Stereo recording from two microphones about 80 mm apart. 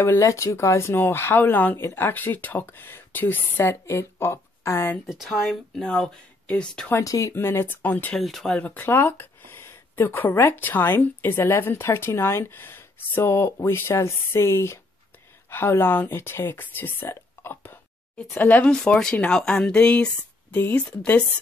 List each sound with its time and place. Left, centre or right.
0.0 s speech: left
5.0 s speech: centre
5.8 s speech: centre
7.0 s speech: left
7.3 s speech: left
8.2 s speech: centre
8.5 s speech: centre
8.8 s speech: left
18.7 s speech: centre